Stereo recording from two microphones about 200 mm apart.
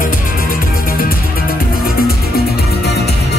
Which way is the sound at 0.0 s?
45° left (ahead or behind).